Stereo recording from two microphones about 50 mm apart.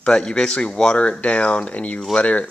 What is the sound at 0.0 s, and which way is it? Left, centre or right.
Speech, centre.